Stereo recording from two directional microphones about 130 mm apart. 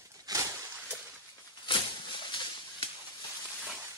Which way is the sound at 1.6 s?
40° left (ahead or behind).